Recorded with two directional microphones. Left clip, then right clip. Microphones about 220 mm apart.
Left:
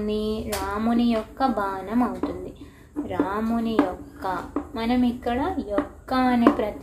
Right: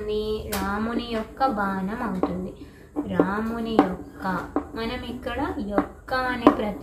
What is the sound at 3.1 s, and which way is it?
A woman's voice, 50° left (ahead or behind).